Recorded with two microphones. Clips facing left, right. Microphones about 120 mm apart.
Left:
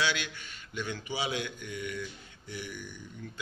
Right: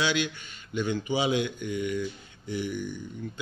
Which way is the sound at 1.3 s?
20° right (ahead or behind).